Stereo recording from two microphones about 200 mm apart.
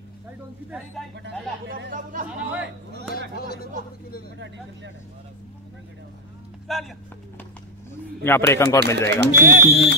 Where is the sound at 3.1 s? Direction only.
50° left (ahead or behind).